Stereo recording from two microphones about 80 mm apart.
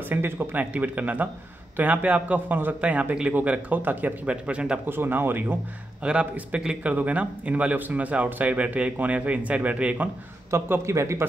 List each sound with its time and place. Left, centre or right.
0.1 s speech: right
4.8 s a man's voice: right
10.5 s a man's voice: right